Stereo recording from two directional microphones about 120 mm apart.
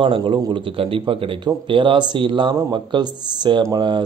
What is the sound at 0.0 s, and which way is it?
A man's voice, 45° right (ahead or behind).